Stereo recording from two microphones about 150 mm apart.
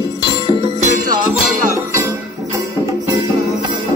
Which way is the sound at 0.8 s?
60° right (ahead or behind).